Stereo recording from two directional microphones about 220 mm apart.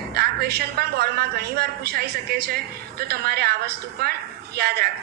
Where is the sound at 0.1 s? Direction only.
45° right (ahead or behind).